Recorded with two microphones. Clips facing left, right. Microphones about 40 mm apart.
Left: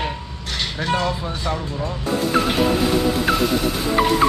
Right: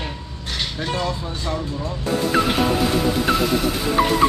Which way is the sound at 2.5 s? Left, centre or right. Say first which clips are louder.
Left 1 dB; centre.